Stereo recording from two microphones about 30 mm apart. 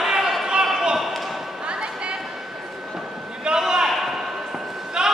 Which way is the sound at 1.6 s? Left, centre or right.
Right.